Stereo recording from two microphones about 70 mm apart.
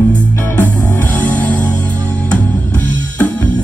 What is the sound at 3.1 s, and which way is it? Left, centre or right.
Music, left.